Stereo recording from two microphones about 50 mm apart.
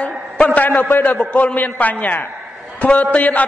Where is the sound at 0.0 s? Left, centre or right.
Left.